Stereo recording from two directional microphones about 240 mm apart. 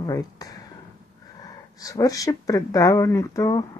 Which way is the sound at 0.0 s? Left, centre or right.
Centre.